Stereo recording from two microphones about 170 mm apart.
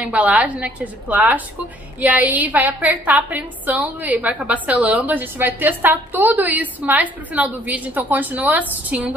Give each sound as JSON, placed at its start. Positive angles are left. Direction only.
{"t": 0.0, "sound": "a woman's voice", "side_deg": -10}